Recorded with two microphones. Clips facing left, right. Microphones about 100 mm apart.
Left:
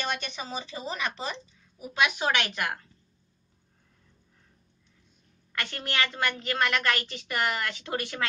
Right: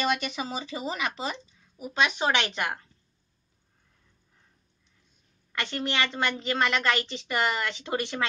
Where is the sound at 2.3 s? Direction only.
25° right (ahead or behind).